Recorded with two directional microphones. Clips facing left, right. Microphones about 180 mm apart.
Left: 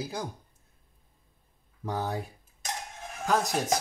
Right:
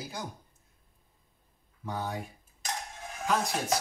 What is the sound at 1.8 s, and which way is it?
Speech, 35° left (ahead or behind).